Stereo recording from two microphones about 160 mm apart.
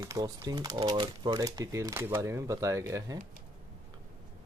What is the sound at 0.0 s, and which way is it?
Speech, 25° right (ahead or behind).